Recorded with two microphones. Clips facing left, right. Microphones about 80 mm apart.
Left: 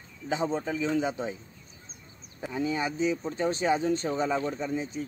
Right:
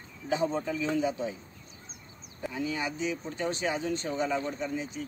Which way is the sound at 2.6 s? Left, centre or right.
Left.